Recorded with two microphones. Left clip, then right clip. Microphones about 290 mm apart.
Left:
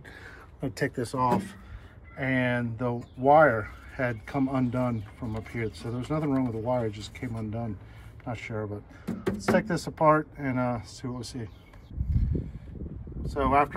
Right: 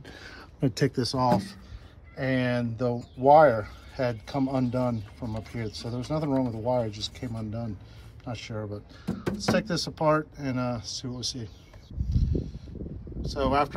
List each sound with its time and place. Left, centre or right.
0.0 s speech: centre
12.1 s a sound: centre
13.2 s speech: centre